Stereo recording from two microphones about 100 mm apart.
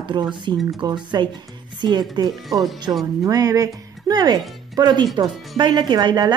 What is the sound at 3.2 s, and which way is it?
Speech, 35° right (ahead or behind).